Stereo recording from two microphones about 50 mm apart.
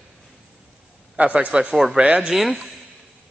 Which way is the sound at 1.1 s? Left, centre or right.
Right.